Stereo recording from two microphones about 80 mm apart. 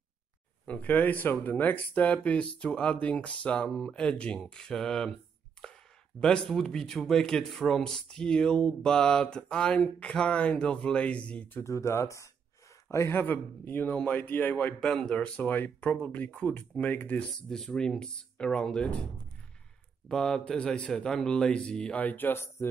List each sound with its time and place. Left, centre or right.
0.7 s a man's voice: centre
11.6 s speech: left
13.2 s a man's voice: left
14.8 s speech: centre
17.5 s speech: centre
20.1 s speech: centre
22.0 s a man's voice: left